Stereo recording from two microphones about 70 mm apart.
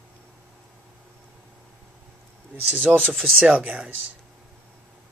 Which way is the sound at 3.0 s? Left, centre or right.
Centre.